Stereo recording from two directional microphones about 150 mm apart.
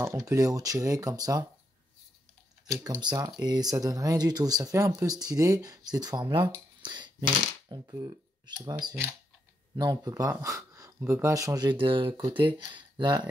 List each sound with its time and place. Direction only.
0.0 s speech: 20° right (ahead or behind)
2.7 s speech: 20° right (ahead or behind)
6.8 s coin: 30° right (ahead or behind)
7.7 s speech: 25° right (ahead or behind)